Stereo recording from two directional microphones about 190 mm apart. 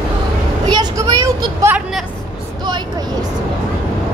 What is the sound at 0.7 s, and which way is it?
Vehicle, 20° right (ahead or behind).